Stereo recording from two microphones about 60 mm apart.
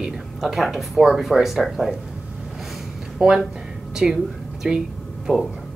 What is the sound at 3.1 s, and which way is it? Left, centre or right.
A woman's voice, centre.